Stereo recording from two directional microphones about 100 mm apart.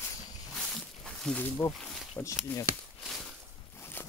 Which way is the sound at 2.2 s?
25° left (ahead or behind).